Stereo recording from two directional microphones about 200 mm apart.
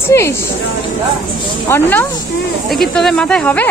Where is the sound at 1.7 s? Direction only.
10° left (ahead or behind).